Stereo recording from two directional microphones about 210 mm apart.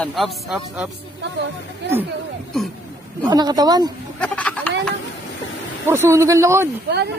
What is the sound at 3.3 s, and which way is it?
Speech, 20° right (ahead or behind).